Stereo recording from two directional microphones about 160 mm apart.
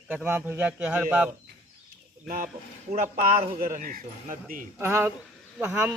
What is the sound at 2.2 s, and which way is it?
Speech, 60° right (ahead or behind).